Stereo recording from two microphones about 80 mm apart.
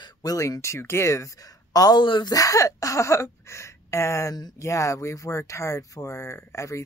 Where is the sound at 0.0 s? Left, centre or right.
Left.